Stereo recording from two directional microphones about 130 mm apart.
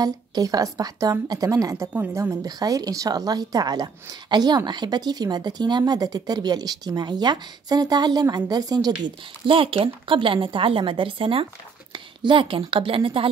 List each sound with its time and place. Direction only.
0.0 s a woman's voice: 30° right (ahead or behind)
2.0 s a woman's voice: 15° right (ahead or behind)
2.4 s speech: 30° right (ahead or behind)